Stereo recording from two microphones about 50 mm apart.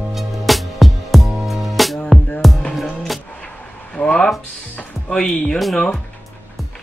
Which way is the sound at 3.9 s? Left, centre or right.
Centre.